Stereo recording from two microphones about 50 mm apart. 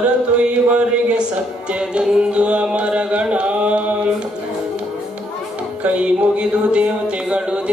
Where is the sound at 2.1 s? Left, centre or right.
Right.